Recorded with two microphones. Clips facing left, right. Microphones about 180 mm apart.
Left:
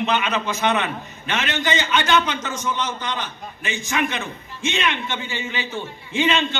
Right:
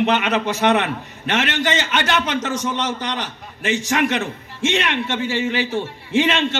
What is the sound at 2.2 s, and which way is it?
A man's voice, 75° right (ahead or behind).